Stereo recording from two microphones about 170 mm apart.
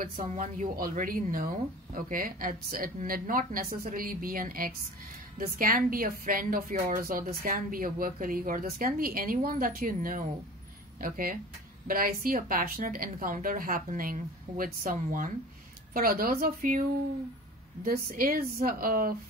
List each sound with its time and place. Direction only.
0.1 s a woman's voice: 40° right (ahead or behind); by 16.8 s 55° right (ahead or behind)
17.8 s a woman's voice: 60° right (ahead or behind)